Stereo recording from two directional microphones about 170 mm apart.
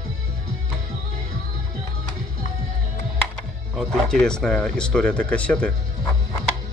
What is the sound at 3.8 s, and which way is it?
Speech, centre (ahead or behind).